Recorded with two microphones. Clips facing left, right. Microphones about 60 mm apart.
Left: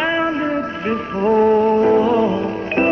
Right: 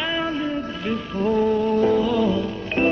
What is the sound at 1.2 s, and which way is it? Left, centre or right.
Music, left.